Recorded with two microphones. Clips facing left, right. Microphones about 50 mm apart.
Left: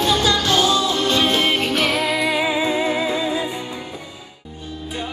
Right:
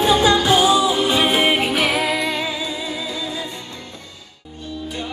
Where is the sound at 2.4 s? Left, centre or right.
Left.